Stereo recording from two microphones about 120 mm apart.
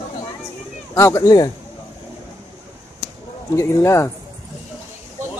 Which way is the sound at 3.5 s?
25° left (ahead or behind).